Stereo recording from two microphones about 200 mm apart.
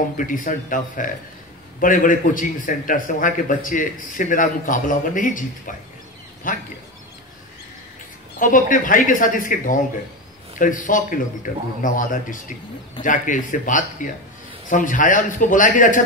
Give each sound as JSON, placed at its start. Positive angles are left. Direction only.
{"t": 0.2, "sound": "a man's voice", "side_deg": 40}
{"t": 8.4, "sound": "a man's voice", "side_deg": 40}